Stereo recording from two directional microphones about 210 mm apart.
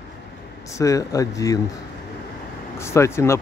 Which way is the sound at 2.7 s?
10° left (ahead or behind).